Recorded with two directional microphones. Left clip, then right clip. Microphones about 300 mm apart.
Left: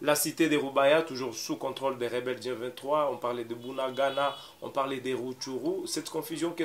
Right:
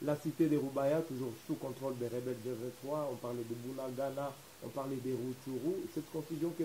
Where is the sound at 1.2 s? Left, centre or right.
Left.